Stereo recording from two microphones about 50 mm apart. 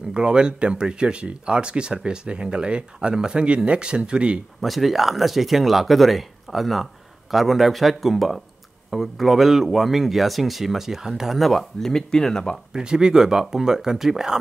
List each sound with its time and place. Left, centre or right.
0.1 s speech: centre
4.6 s speech: centre
12.7 s speech: centre